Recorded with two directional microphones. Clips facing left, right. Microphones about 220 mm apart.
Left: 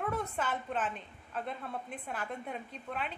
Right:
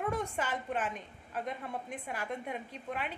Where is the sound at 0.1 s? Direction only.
10° right (ahead or behind).